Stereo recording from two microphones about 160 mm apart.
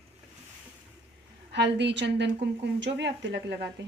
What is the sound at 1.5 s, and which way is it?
A woman's voice, 90° right.